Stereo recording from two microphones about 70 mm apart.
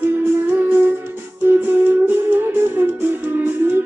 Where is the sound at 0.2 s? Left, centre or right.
Right.